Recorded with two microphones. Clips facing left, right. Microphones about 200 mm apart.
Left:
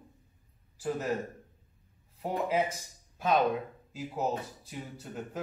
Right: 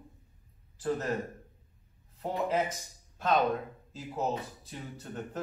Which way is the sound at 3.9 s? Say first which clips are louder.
Left 1 dB; 10° left (ahead or behind).